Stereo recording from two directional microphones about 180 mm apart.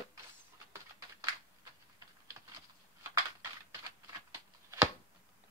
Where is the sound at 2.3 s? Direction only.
15° right (ahead or behind).